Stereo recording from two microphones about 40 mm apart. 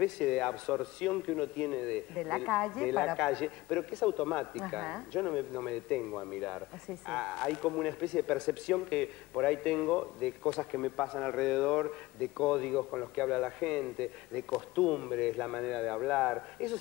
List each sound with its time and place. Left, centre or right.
0.0 s a man's voice: left